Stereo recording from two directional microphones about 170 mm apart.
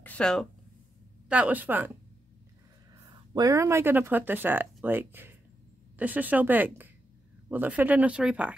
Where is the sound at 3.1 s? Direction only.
25° right (ahead or behind); by 8.5 s 5° right (ahead or behind).